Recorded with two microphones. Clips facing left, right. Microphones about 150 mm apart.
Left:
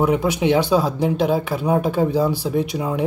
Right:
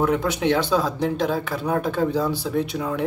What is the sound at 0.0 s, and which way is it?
Speech, 10° left (ahead or behind).